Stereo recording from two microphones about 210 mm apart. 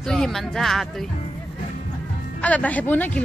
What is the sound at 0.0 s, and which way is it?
A woman's voice, centre (ahead or behind).